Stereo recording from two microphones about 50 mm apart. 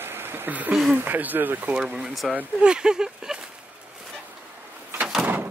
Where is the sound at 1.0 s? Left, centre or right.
Right.